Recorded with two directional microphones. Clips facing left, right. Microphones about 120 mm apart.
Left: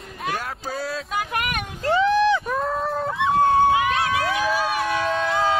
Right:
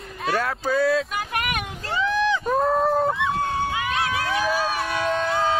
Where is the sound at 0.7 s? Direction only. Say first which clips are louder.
Right 9 dB; 60° right (ahead or behind).